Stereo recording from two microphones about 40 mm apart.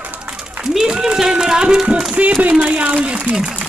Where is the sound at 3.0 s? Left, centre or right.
Right.